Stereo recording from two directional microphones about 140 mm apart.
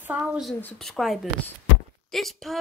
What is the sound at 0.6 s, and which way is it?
Speech, 10° left (ahead or behind).